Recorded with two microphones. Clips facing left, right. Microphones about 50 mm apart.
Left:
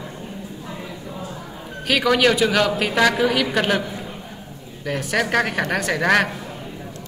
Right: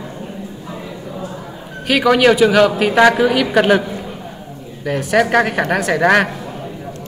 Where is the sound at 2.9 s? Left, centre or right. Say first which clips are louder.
Right 7 dB; right.